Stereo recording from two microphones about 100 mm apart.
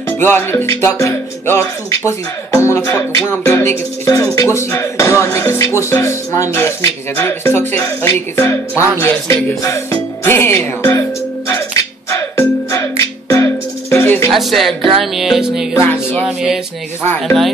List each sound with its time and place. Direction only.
0.2 s speech: 20° left (ahead or behind)
8.7 s music: 20° right (ahead or behind)
9.0 s speech: 30° left (ahead or behind)
10.2 s music: 25° left (ahead or behind)
14.3 s music: centre (ahead or behind)
15.7 s speech: 20° left (ahead or behind)
16.3 s music: 5° right (ahead or behind)